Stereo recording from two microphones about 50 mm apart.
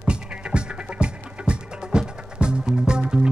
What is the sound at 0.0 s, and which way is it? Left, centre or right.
Music, centre.